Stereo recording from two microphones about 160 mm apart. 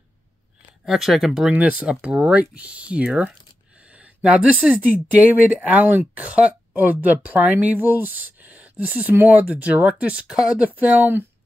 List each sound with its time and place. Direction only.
0.8 s speech: centre (ahead or behind)